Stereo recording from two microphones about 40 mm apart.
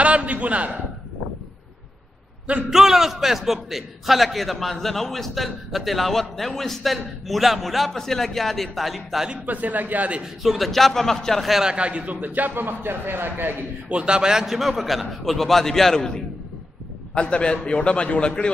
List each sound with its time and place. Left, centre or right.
0.0 s a man's voice: right
2.7 s a man's voice: centre
9.5 s speech: right
10.4 s a man's voice: centre
11.6 s a man's voice: right
12.2 s a man's voice: right
13.8 s a man's voice: right
14.4 s a man's voice: centre; by 18.5 s left